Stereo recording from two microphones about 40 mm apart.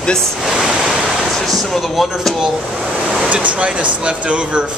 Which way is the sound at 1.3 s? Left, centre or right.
Centre.